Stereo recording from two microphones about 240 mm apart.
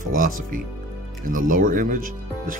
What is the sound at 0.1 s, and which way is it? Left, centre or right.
Speech, right.